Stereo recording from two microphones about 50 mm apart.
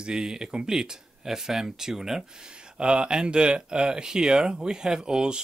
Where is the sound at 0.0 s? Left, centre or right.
Centre.